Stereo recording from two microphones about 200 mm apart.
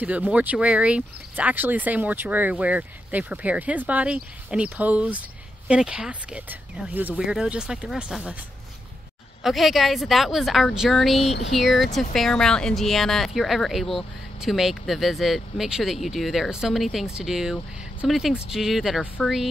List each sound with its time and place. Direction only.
0.0 s speech: 5° right (ahead or behind)
9.4 s speech: centre (ahead or behind)